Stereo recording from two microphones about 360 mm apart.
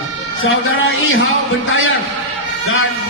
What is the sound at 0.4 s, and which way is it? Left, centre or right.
Speech, left.